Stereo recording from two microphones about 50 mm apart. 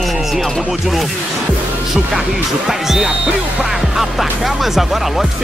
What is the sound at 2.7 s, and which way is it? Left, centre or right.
Music, centre.